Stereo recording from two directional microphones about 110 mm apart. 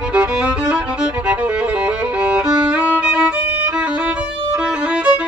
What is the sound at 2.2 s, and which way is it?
Violin, 10° right (ahead or behind).